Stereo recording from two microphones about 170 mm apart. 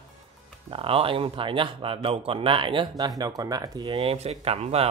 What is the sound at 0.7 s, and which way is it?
Speech, 30° right (ahead or behind).